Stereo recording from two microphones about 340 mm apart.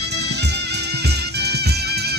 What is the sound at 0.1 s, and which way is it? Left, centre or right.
Music, right.